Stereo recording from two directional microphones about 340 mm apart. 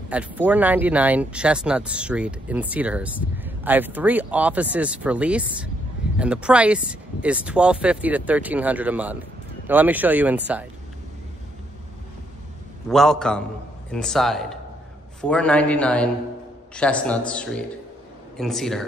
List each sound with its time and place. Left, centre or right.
0.1 s speech: centre
12.8 s speech: centre